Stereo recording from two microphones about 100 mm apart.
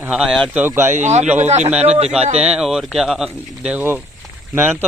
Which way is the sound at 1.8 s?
90° right.